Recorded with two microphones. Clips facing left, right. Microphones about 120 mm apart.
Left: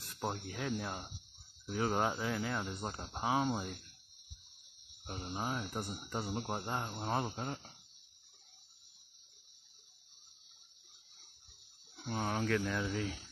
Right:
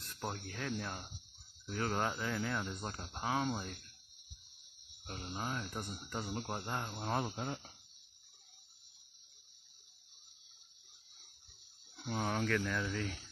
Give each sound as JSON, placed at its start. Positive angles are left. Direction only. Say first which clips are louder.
{"t": 0.3, "sound": "speech", "louder": "left 2 dB", "side_deg": 10}
{"t": 3.1, "sound": "speech", "louder": "left 3 dB", "side_deg": 20}
{"t": 3.4, "sound": "speech", "louder": "left 2 dB", "side_deg": 5}
{"t": 5.0, "sound": "speech", "louder": "left 2 dB", "side_deg": 10}
{"t": 12.0, "sound": "speech", "louder": "even", "side_deg": 0}